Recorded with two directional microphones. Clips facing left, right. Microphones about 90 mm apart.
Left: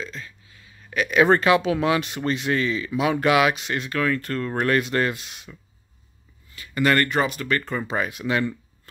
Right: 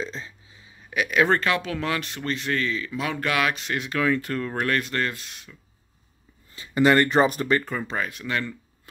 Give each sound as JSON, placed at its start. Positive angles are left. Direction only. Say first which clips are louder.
{"t": 0.0, "sound": "a sound", "louder": "right 2 dB", "side_deg": -25}
{"t": 0.8, "sound": "speech", "louder": "left 3 dB", "side_deg": -5}
{"t": 3.9, "sound": "speech", "louder": "right 1 dB", "side_deg": -15}
{"t": 6.5, "sound": "speech", "louder": "right 2 dB", "side_deg": -25}
{"t": 7.7, "sound": "speech", "louder": "left 3 dB", "side_deg": 10}